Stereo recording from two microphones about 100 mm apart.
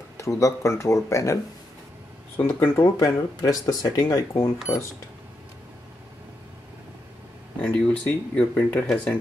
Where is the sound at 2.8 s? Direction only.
35° left (ahead or behind).